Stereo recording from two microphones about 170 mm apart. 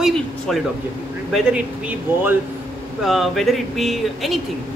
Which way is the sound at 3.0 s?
Centre (ahead or behind).